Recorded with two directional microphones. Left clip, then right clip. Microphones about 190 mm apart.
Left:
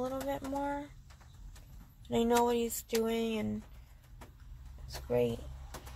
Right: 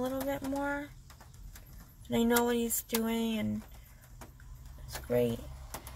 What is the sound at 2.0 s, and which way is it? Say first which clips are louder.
Speech: even; 10° right (ahead or behind).